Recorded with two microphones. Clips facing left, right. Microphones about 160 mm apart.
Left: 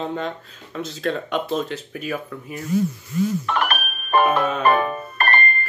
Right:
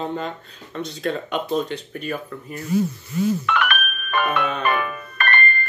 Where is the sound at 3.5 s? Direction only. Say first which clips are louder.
Even; 35° left (ahead or behind).